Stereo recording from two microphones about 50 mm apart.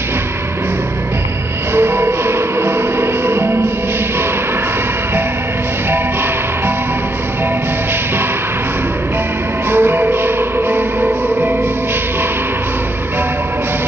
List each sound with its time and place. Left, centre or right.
1.7 s music: right
9.7 s music: right